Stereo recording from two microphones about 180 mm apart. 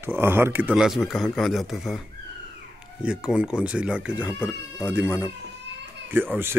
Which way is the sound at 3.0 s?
5° right (ahead or behind).